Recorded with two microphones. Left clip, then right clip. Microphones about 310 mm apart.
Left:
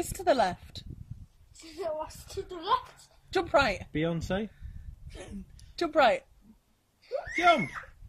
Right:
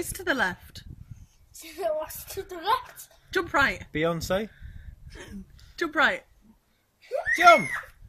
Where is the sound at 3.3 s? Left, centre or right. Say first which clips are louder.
Right 2 dB; centre.